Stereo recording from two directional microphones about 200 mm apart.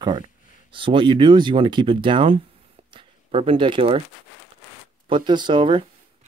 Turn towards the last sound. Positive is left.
turn(degrees=-25)  # may be behind; listen again after turning